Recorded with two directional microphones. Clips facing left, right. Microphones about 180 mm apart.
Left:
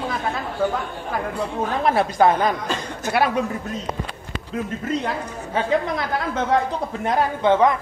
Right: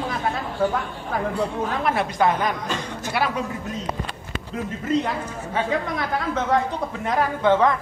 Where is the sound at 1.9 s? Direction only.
30° left (ahead or behind).